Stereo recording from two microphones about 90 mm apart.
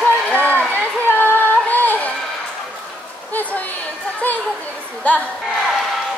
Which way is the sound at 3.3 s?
20° left (ahead or behind).